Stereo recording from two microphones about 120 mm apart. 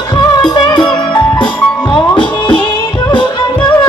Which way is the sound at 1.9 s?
40° left (ahead or behind).